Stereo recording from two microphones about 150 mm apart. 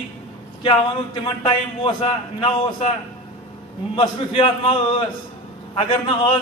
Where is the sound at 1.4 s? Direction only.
35° left (ahead or behind).